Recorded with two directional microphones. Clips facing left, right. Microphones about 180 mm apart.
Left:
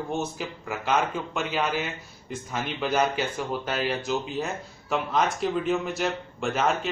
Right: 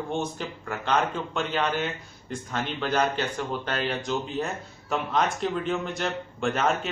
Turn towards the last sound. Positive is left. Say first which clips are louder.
# even
turn(degrees=0)  # may be behind; listen again after turning